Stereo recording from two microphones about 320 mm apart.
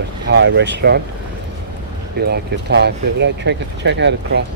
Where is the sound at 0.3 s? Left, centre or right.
Right.